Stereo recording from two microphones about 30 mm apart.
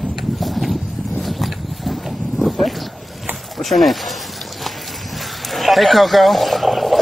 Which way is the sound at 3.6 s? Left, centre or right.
Centre.